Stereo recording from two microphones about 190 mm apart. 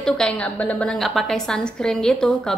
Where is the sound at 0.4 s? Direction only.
5° left (ahead or behind).